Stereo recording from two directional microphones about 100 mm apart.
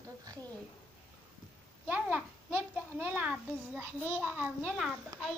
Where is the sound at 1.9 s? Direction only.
20° right (ahead or behind).